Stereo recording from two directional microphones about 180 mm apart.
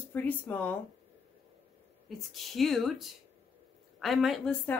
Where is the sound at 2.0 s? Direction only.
Centre (ahead or behind).